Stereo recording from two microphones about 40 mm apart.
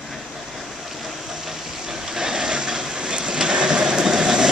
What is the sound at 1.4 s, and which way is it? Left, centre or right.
Vehicle, centre.